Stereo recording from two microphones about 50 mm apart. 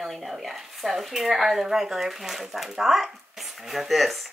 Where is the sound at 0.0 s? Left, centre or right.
Centre.